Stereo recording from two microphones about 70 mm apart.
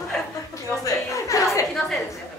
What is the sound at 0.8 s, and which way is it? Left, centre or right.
Speech, left.